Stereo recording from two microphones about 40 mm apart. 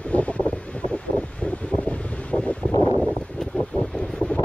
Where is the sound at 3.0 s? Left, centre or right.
Left.